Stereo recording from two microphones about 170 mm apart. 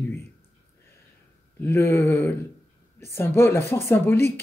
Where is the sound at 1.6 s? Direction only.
15° left (ahead or behind).